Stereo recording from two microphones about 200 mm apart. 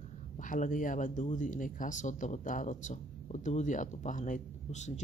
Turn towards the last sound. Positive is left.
turn(degrees=40)  # may be behind; listen again after turning